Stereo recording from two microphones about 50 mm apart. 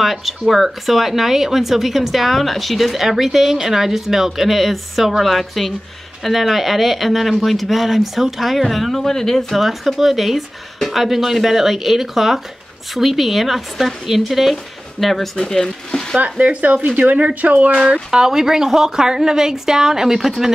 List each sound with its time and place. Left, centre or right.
0.0 s speech: centre
9.6 s speech: centre
16.3 s speech: right
18.1 s a woman's voice: centre